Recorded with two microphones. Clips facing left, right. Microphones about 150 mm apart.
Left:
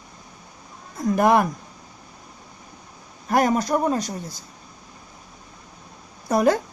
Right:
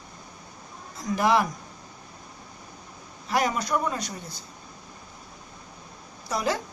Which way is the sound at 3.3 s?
45° left (ahead or behind).